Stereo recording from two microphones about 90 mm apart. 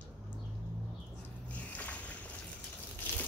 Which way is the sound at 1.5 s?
15° left (ahead or behind).